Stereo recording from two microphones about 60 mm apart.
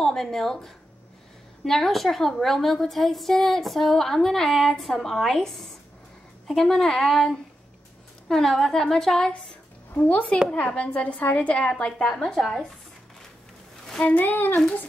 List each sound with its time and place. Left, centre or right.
0.0 s a woman's voice: centre
9.9 s a woman's voice: left
14.0 s speech: left